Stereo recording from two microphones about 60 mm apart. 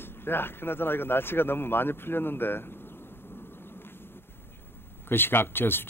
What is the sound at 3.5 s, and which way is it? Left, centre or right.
Vehicle, left.